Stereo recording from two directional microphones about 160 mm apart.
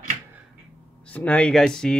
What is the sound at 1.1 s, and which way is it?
Speech, 10° left (ahead or behind).